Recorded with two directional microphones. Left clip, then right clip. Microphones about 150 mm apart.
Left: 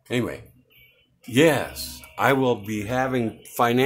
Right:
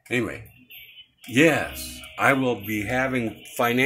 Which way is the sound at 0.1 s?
20° left (ahead or behind).